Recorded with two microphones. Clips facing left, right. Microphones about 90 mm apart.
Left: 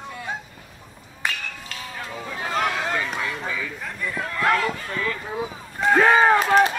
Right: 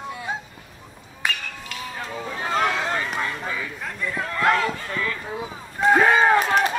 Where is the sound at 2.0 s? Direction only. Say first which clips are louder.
Right 1 dB; 35° right (ahead or behind).